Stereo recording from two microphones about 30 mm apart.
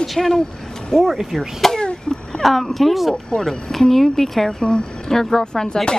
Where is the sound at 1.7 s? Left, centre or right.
Left.